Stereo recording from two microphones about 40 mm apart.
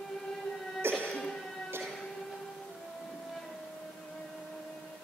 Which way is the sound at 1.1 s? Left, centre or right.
Centre.